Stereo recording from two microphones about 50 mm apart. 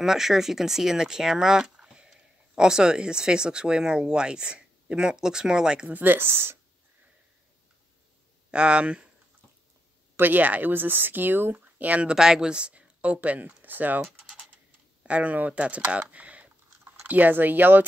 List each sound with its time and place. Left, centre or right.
0.0 s speech: centre
5.9 s speech: right
6.1 s speech: right
8.5 s speech: right
10.1 s speech: right
11.6 s speech: right
12.1 s speech: centre; by 14.0 s right
15.0 s speech: right